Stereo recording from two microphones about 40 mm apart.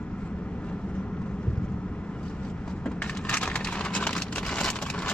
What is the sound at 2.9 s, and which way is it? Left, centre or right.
Crushing, left.